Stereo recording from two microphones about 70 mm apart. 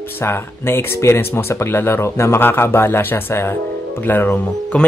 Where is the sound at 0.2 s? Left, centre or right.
Left.